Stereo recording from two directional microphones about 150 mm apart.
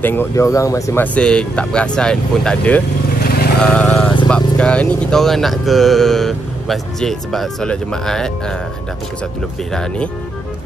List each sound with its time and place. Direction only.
0.0 s speech: 15° left (ahead or behind)
1.0 s speech: 5° left (ahead or behind)
3.2 s vehicle: 90° left
3.6 s speech: 5° left (ahead or behind)
9.7 s speech: 5° left (ahead or behind)